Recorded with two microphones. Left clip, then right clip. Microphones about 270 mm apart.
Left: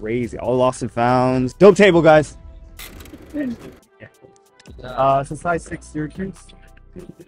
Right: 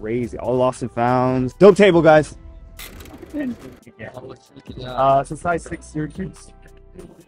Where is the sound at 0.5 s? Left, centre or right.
Left.